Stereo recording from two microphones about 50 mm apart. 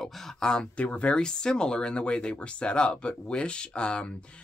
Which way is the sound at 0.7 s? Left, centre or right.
Left.